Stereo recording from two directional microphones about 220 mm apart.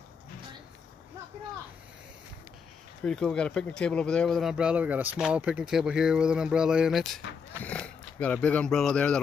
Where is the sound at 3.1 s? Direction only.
5° left (ahead or behind).